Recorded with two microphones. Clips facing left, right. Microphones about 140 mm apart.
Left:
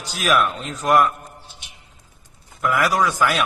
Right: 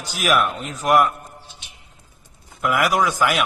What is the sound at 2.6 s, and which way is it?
Speech, 15° right (ahead or behind).